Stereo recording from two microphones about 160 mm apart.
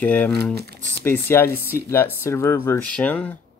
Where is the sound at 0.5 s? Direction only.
85° right.